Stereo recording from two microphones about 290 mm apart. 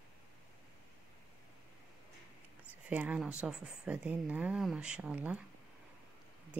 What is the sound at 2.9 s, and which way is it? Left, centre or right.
Speech, centre.